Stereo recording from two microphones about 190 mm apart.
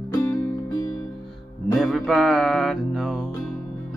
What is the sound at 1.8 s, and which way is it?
Music, centre (ahead or behind).